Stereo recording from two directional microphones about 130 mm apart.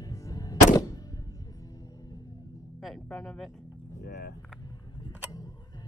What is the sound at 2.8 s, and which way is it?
Music, 5° left (ahead or behind).